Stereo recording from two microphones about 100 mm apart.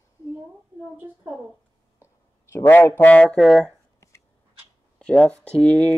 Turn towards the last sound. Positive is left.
turn(degrees=10)  # may be behind; listen again after turning